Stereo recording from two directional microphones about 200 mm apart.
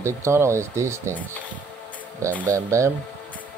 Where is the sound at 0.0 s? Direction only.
15° right (ahead or behind).